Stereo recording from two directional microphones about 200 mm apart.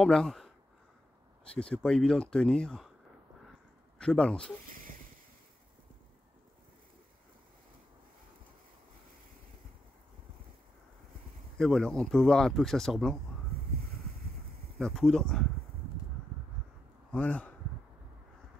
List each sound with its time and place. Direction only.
0.0 s speech: 5° left (ahead or behind)
4.0 s speech: 5° left (ahead or behind)
11.5 s speech: centre (ahead or behind)
14.8 s speech: 5° left (ahead or behind)
17.1 s speech: 5° left (ahead or behind)